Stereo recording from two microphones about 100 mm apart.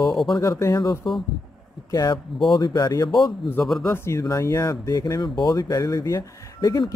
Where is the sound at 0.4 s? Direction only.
35° left (ahead or behind).